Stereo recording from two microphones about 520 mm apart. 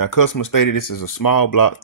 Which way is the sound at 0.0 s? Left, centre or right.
Left.